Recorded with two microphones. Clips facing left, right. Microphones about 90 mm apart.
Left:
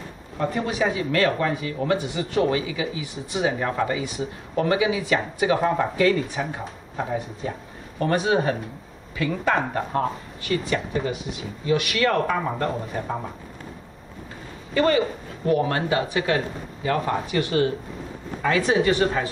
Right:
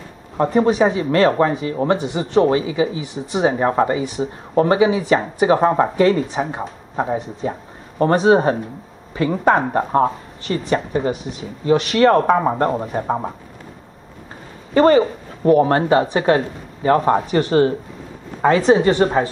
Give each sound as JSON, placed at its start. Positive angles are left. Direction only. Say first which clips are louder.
{"t": 0.4, "sound": "speech", "louder": "right 9 dB", "side_deg": -35}
{"t": 14.7, "sound": "speech", "louder": "right 8 dB", "side_deg": -35}